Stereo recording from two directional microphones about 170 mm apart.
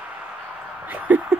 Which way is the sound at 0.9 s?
10° right (ahead or behind).